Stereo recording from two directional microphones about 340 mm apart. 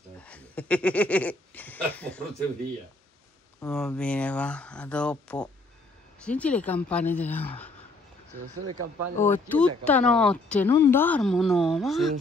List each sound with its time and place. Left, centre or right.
0.2 s speech: centre
3.6 s speech: centre
9.2 s speech: centre